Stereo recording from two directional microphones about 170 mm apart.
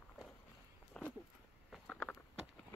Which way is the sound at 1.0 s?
5° left (ahead or behind).